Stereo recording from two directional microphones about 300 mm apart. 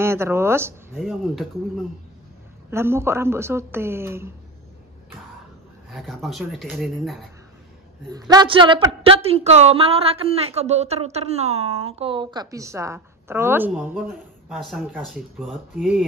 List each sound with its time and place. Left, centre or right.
0.0 s a woman's voice: centre
5.9 s speech: centre
8.1 s a woman's voice: centre